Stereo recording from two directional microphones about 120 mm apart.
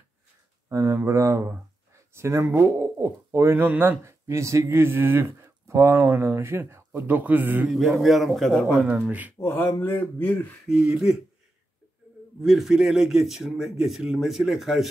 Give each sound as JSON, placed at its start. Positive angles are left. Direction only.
{"t": 0.7, "sound": "speech", "side_deg": -25}
{"t": 7.6, "sound": "a man's voice", "side_deg": 0}
{"t": 8.8, "sound": "speech", "side_deg": -10}
{"t": 9.4, "sound": "speech", "side_deg": 20}
{"t": 10.7, "sound": "a man's voice", "side_deg": -5}
{"t": 12.4, "sound": "a man's voice", "side_deg": 0}